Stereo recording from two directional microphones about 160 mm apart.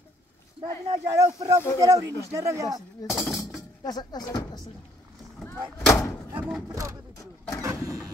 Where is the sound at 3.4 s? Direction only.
25° left (ahead or behind).